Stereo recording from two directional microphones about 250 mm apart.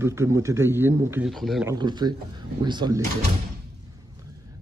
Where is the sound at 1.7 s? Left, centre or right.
Centre.